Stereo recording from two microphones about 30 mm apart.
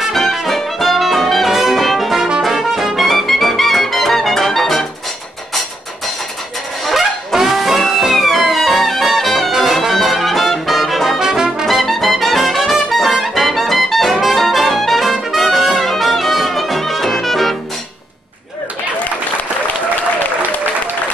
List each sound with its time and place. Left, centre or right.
0.1 s music: centre
0.5 s brass instrument: centre
1.8 s music: centre
7.4 s music: centre
9.0 s brass instrument: centre
11.1 s brass instrument: centre
11.8 s music: centre
14.2 s trumpet: centre